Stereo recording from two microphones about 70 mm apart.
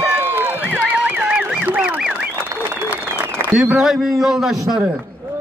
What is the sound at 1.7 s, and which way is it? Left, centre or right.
Duck, centre.